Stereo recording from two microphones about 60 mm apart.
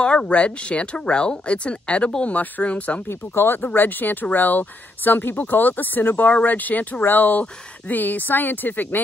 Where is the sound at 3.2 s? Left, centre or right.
Left.